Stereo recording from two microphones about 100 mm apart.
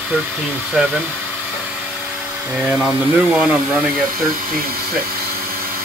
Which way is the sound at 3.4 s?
5° right (ahead or behind).